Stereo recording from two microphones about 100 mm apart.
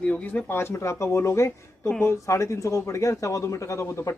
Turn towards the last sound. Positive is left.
turn(degrees=30)  # may be behind; listen again after turning